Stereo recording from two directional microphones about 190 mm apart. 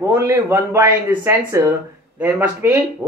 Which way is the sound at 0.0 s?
15° right (ahead or behind).